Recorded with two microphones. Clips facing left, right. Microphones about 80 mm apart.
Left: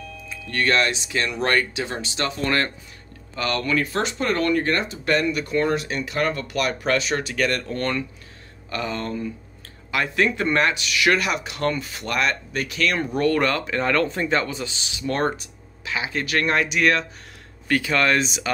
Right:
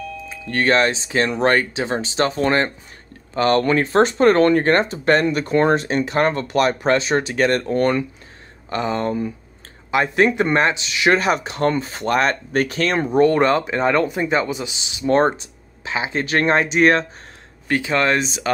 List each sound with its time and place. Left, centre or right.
0.3 s speech: right